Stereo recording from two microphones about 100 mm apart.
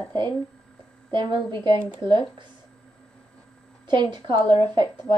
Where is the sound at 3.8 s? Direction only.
50° right (ahead or behind).